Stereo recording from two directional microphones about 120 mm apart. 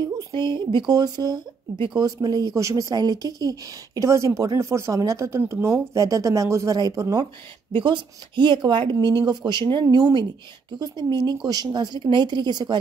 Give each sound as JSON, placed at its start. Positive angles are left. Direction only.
{"t": 0.0, "sound": "speech", "side_deg": -35}